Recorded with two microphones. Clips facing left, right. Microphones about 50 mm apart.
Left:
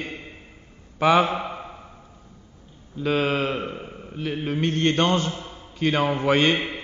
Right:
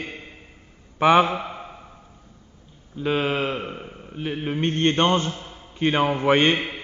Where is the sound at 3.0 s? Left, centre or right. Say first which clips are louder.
Even; centre.